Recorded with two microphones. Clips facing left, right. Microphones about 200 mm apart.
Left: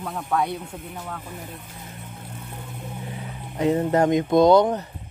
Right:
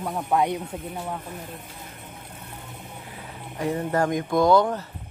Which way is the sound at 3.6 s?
20° left (ahead or behind).